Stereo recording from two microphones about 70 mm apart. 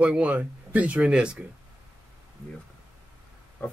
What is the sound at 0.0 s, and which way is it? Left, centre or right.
Speech, centre.